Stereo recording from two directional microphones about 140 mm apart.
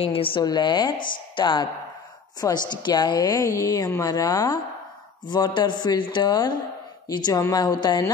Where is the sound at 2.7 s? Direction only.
30° left (ahead or behind).